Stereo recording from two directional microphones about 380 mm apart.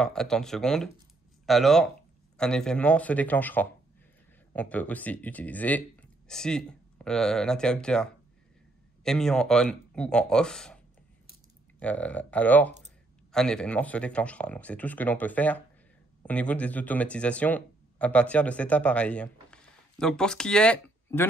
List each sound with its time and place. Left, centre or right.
0.0 s speech: centre
11.8 s speech: centre